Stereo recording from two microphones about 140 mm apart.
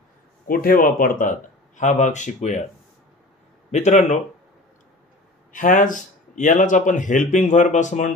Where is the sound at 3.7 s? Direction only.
55° left (ahead or behind).